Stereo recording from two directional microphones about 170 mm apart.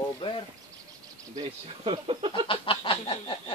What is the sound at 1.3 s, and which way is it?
Speech, 35° right (ahead or behind).